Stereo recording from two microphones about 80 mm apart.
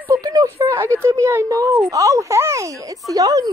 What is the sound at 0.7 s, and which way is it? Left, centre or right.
Speech, right.